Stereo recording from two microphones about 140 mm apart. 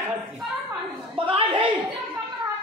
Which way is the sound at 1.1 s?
40° right (ahead or behind).